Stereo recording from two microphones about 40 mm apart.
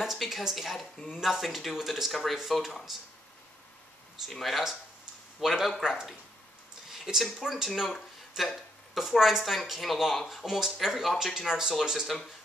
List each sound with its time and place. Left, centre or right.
0.0 s speech: centre
4.3 s speech: centre
6.9 s a sound: centre
7.2 s speech: centre